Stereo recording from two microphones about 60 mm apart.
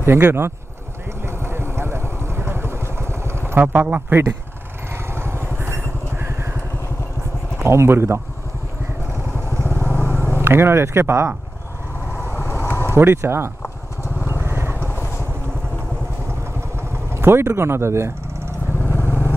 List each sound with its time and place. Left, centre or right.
0.0 s speech: right
1.2 s vehicle: right
3.6 s speech: right
4.9 s vehicle: right
7.5 s speech: right
9.6 s vehicle: left
10.4 s speech: right
12.3 s vehicle: left
12.9 s speech: right
14.4 s vehicle: right
14.8 s vehicle: left
17.1 s speech: right
18.9 s vehicle: left